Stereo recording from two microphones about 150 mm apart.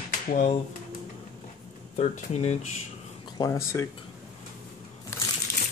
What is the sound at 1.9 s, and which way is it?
Speech, 45° left (ahead or behind).